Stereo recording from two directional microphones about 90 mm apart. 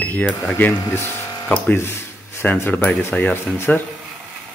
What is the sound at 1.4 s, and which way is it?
Speech, 10° left (ahead or behind).